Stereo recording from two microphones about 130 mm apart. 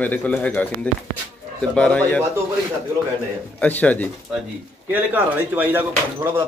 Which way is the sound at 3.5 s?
10° left (ahead or behind).